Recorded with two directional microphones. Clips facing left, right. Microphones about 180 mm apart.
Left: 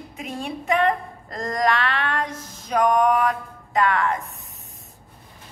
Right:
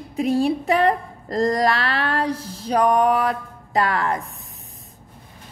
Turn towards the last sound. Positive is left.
turn(degrees=-35)  # may be behind; listen again after turning